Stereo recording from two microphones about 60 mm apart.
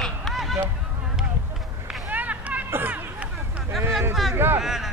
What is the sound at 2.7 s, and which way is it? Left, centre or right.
Hubbub, right.